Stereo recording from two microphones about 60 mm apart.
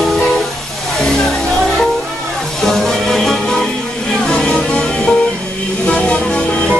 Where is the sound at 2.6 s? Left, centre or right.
Centre.